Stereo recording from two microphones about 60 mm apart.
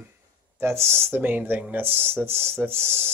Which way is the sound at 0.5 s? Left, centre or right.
Right.